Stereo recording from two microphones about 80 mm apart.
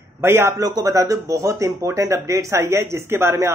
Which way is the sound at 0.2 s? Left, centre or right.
Right.